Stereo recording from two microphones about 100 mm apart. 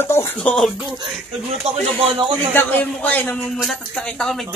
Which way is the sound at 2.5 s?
20° left (ahead or behind).